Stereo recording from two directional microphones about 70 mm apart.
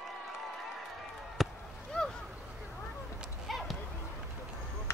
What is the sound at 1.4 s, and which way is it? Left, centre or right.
Chop, centre.